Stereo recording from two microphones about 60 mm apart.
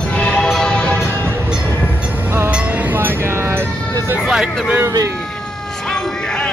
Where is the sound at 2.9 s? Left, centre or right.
Right.